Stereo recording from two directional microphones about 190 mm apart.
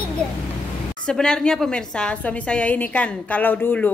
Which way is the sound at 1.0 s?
5° left (ahead or behind).